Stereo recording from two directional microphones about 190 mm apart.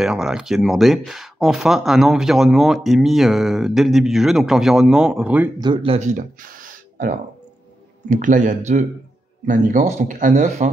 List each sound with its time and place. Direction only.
0.0 s speech: 5° right (ahead or behind)
5.6 s speech: 25° right (ahead or behind)